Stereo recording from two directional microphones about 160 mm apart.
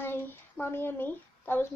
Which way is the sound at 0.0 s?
15° left (ahead or behind).